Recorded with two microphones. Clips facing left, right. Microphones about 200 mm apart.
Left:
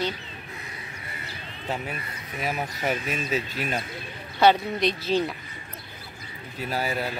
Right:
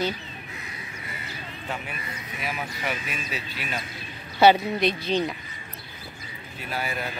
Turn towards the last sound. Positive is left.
turn(degrees=35)  # may be behind; listen again after turning